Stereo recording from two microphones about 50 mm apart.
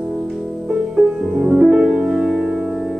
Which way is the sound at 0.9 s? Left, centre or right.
Centre.